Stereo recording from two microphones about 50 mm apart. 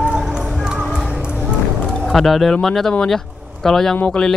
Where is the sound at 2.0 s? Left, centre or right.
Centre.